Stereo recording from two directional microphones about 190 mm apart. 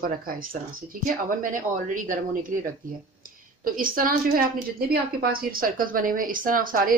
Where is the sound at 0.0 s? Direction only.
50° right (ahead or behind).